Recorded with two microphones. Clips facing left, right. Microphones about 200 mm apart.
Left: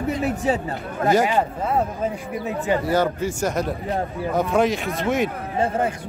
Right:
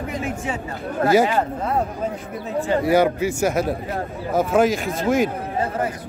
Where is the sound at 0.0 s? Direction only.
40° left (ahead or behind).